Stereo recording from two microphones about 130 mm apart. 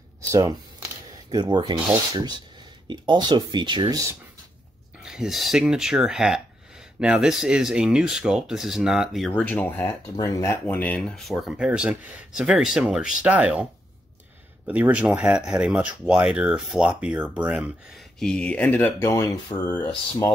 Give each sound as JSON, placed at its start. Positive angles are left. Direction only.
{"t": 0.3, "sound": "speech", "side_deg": -25}
{"t": 5.0, "sound": "speech", "side_deg": -5}
{"t": 9.3, "sound": "speech", "side_deg": 10}
{"t": 10.1, "sound": "speech", "side_deg": 25}
{"t": 11.0, "sound": "speech", "side_deg": 5}
{"t": 14.7, "sound": "speech", "side_deg": -10}
{"t": 18.2, "sound": "speech", "side_deg": 5}